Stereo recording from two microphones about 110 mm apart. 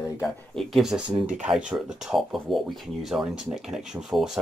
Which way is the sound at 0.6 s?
Centre (ahead or behind).